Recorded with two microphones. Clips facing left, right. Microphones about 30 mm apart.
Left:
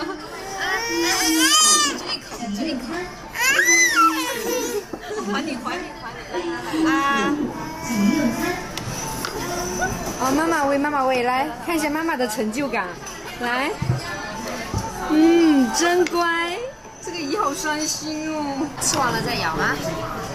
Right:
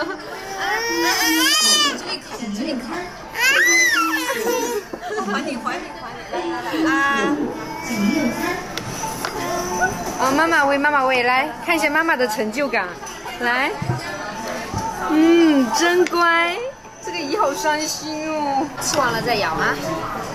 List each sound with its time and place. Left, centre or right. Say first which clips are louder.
0.7 s baby cry: right 3 dB; centre
2.6 s music: right 1 dB; centre
3.3 s a sound: right 2 dB; right
4.0 s children playing: left 1 dB; centre
5.3 s a sound: left 1 dB; centre
7.9 s music: even; right
9.2 s music: right 3 dB; centre
10.1 s a sound: right 3 dB; right
10.7 s a woman's voice: right 3 dB; right
11.9 s a woman's voice: right 4 dB; right
12.5 s a woman's voice: right 3 dB; centre
15.1 s a woman's voice: right 1 dB; centre